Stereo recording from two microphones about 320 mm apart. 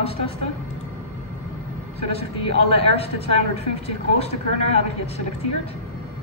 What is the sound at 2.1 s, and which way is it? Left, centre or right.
A man's voice, centre.